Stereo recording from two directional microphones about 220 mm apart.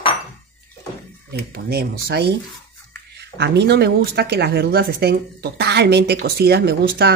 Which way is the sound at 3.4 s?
50° right (ahead or behind).